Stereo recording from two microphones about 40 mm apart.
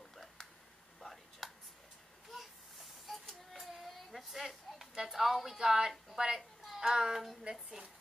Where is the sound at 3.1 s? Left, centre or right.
Centre.